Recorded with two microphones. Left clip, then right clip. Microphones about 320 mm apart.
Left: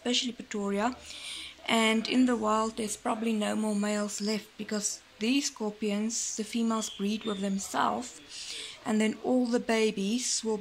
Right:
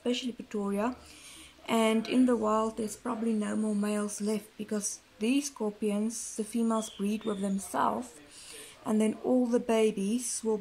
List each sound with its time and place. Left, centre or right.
0.0 s speech: centre